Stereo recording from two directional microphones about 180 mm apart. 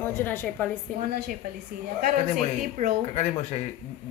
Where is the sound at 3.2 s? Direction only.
35° left (ahead or behind).